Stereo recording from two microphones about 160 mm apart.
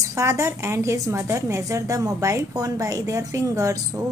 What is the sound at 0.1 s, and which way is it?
A woman's voice, 20° right (ahead or behind).